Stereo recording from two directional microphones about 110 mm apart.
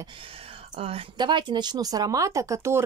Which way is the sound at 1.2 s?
45° right (ahead or behind).